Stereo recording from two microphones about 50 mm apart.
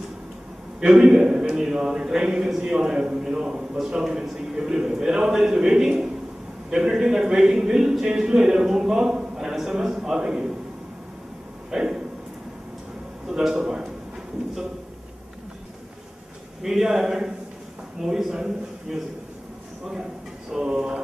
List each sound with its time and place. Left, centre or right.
0.7 s a man's voice: centre
11.7 s speech: centre
13.3 s a man's voice: centre
16.6 s a man's voice: centre
20.5 s a sound: centre